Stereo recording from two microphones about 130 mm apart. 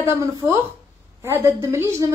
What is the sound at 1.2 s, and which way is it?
Speech, 20° right (ahead or behind).